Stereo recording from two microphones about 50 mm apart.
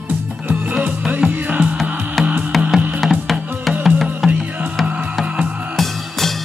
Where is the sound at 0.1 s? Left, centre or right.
Right.